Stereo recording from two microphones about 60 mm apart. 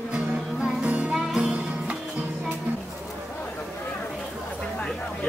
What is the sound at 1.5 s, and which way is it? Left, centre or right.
Music, centre.